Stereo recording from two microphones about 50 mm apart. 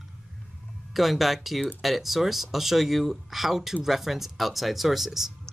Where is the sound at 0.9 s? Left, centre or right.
Centre.